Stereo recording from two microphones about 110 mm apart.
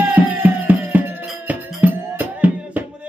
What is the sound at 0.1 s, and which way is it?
Music, 15° right (ahead or behind).